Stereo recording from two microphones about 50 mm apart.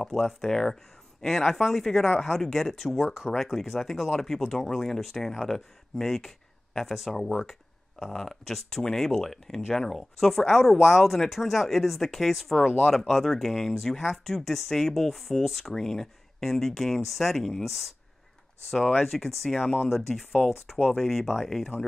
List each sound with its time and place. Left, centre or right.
0.0 s speech: centre
19.0 s speech: centre